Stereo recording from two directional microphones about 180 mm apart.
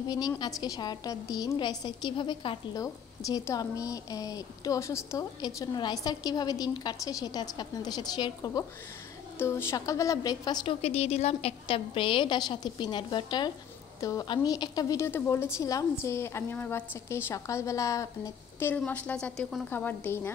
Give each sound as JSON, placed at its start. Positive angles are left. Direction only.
{"t": 0.1, "sound": "a woman's voice", "side_deg": 20}